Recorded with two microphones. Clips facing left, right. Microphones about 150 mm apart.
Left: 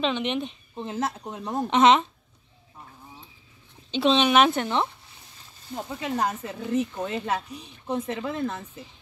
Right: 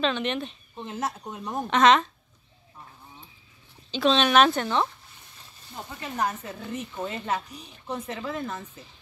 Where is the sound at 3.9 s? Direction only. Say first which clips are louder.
Left 1 dB; 20° left (ahead or behind).